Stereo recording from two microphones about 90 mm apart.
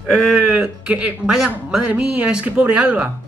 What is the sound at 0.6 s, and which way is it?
Speech, 15° right (ahead or behind).